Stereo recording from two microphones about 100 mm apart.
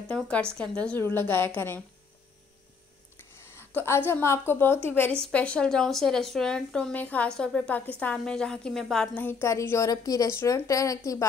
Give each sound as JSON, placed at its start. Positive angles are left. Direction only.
{"t": 0.1, "sound": "speech", "side_deg": 10}
{"t": 1.0, "sound": "a woman's voice", "side_deg": 20}
{"t": 3.5, "sound": "a woman's voice", "side_deg": 25}
{"t": 9.4, "sound": "a woman's voice", "side_deg": 30}